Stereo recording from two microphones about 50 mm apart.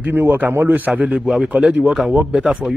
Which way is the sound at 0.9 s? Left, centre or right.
Right.